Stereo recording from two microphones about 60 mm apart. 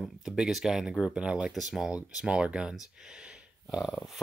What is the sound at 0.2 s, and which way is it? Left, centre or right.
Speech, centre.